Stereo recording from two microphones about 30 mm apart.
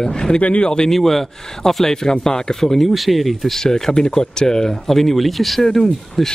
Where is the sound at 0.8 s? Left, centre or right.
Centre.